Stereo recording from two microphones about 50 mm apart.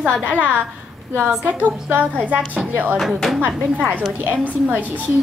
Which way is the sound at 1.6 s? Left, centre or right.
Right.